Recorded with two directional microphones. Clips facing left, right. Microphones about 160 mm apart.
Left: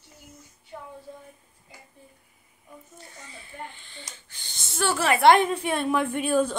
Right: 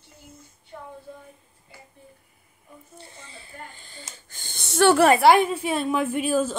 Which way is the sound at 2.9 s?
30° right (ahead or behind).